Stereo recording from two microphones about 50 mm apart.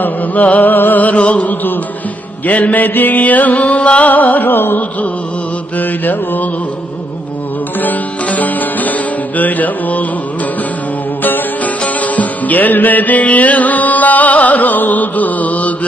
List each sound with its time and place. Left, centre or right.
0.0 s music: left
7.8 s music: left
11.2 s music: left